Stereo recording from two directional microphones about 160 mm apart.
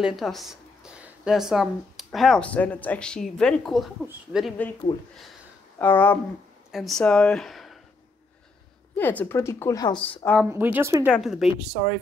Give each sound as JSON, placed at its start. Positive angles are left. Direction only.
{"t": 0.0, "sound": "a woman's voice", "side_deg": 0}
{"t": 5.8, "sound": "a woman's voice", "side_deg": 10}
{"t": 6.7, "sound": "speech", "side_deg": 0}
{"t": 8.9, "sound": "a woman's voice", "side_deg": 10}
{"t": 10.5, "sound": "speech", "side_deg": -15}
{"t": 11.1, "sound": "a woman's voice", "side_deg": 0}